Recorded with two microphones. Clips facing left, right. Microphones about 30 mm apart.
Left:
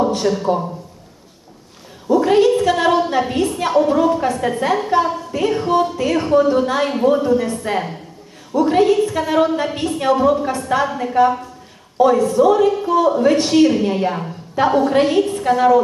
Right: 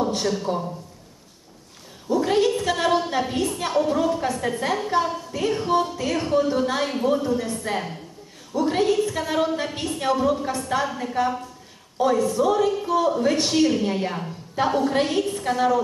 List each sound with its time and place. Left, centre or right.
0.1 s speech: centre
2.1 s speech: centre